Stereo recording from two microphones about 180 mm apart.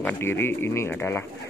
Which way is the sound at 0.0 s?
10° left (ahead or behind).